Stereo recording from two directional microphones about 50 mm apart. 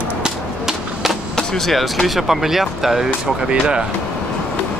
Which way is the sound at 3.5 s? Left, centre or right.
Centre.